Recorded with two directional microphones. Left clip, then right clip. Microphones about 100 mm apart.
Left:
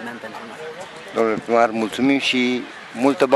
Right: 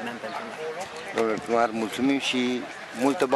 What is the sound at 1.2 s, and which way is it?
Speech, 50° left (ahead or behind).